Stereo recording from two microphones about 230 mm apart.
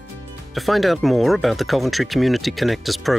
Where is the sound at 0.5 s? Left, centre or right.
Centre.